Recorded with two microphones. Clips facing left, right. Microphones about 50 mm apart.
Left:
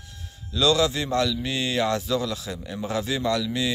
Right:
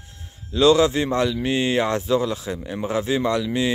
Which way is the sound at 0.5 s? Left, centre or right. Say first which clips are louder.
Right 5 dB; right.